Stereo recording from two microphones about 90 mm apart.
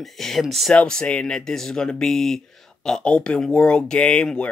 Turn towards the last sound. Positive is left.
turn(degrees=10)  # may be behind; listen again after turning